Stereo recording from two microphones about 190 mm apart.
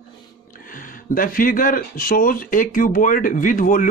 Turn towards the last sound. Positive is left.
turn(degrees=45)  # may be behind; listen again after turning